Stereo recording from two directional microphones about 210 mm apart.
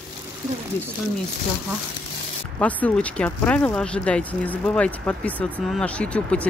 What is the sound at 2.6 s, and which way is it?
Speech, 5° left (ahead or behind).